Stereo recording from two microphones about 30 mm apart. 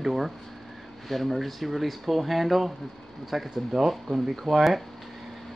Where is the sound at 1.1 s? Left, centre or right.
Centre.